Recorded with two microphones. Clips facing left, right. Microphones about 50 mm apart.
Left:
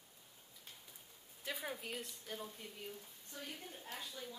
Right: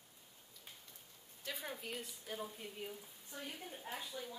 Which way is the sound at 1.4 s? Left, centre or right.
Centre.